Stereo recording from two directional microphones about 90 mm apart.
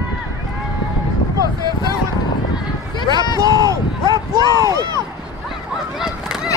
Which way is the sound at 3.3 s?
45° right (ahead or behind).